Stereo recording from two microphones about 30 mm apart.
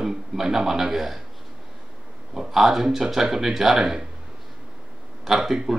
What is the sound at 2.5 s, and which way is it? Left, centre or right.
A man's voice, centre.